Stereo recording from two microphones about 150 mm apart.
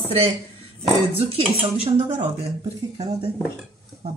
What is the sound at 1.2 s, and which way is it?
Speech, 40° right (ahead or behind).